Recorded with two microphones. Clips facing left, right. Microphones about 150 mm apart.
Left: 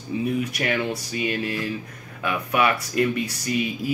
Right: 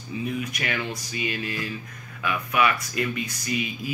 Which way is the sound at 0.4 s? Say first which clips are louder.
Left 5 dB; 35° left (ahead or behind).